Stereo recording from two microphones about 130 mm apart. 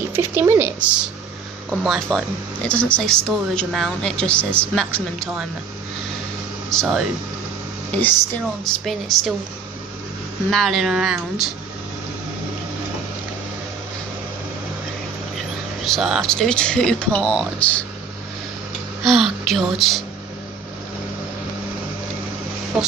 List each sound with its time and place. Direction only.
0.1 s speech: 20° right (ahead or behind); by 5.5 s centre (ahead or behind)
6.7 s speech: centre (ahead or behind)
7.9 s speech: 15° left (ahead or behind)
10.5 s speech: centre (ahead or behind)
15.8 s speech: centre (ahead or behind)
19.0 s speech: centre (ahead or behind)